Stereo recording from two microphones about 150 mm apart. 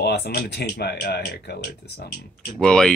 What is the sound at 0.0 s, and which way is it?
Speech, 90° left.